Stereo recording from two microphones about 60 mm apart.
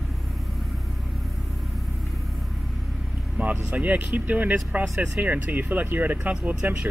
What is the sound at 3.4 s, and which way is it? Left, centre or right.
Speech, right.